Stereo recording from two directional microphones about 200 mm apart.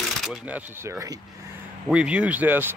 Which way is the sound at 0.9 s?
15° right (ahead or behind).